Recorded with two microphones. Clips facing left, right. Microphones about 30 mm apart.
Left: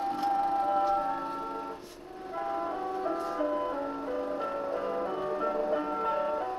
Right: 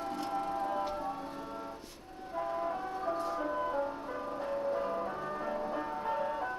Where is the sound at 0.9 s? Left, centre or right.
Left.